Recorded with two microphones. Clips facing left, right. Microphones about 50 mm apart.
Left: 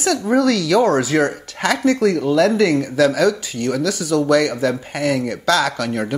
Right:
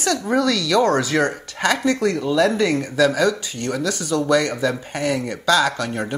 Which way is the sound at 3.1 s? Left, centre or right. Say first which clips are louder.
Left 2 dB; right.